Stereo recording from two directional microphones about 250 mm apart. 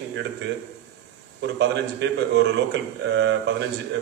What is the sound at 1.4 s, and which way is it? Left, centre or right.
A man's voice, right.